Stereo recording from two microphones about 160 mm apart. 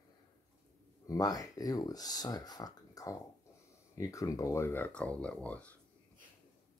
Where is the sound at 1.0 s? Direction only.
20° left (ahead or behind).